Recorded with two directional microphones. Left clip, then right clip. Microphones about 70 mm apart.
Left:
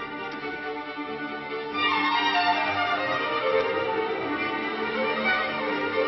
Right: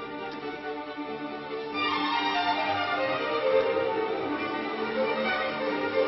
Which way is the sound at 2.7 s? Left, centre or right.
Left.